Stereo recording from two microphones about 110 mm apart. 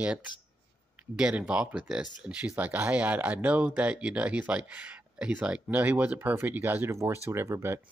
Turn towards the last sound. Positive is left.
turn(degrees=-25)  # may be behind; listen again after turning